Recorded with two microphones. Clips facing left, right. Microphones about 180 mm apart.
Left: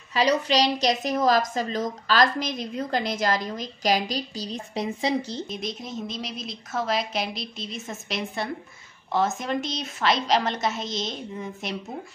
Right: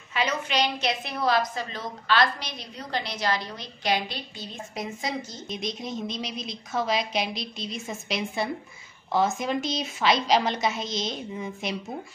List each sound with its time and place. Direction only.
0.1 s a woman's voice: 35° left (ahead or behind)
5.5 s a woman's voice: centre (ahead or behind)